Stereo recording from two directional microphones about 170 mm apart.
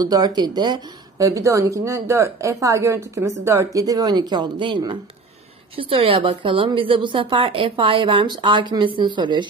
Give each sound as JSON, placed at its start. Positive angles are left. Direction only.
{"t": 0.0, "sound": "a woman's voice", "side_deg": -20}